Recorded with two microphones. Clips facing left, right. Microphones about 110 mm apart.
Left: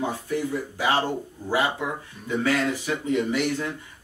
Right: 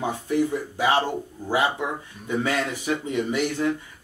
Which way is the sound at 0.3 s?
20° right (ahead or behind).